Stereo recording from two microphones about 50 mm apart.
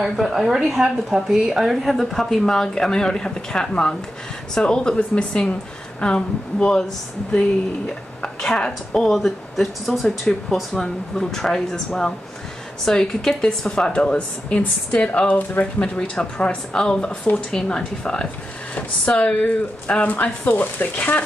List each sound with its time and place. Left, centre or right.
0.2 s speech: centre
8.4 s speech: centre
9.1 s speech: centre; by 15.4 s left
15.6 s speech: centre
18.8 s speech: left